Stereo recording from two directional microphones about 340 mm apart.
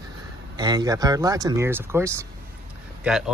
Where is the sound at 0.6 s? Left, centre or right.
Centre.